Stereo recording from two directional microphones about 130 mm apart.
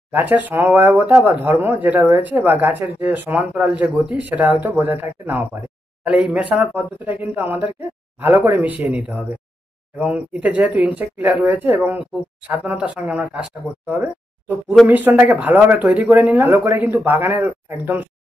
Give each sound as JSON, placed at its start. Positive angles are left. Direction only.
{"t": 0.1, "sound": "speech", "side_deg": -15}